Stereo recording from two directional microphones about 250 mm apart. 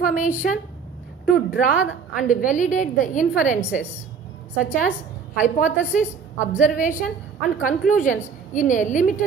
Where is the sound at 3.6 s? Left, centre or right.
Centre.